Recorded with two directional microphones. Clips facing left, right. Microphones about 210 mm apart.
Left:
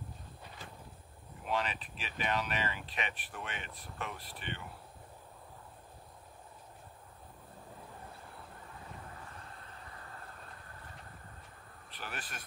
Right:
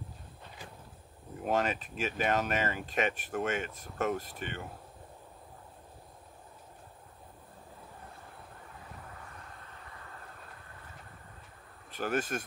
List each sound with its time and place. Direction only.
1.4 s speech: 45° right (ahead or behind)
11.9 s speech: 45° right (ahead or behind)